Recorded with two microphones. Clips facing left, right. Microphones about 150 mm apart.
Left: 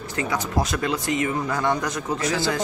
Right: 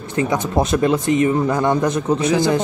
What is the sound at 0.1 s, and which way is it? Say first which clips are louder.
A man's voice: right 7 dB; 20° right (ahead or behind).